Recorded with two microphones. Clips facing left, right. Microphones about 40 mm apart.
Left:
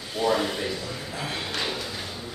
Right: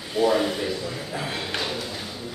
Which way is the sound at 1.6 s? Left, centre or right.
Centre.